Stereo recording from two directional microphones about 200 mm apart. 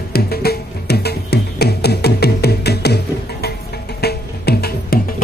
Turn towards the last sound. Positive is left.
turn(degrees=50)  # may be behind; listen again after turning